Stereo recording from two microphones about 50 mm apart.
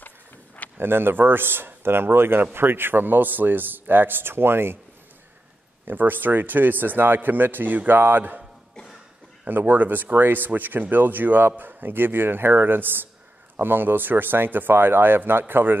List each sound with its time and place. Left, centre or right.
0.7 s speech: right
5.9 s speech: right
9.5 s speech: right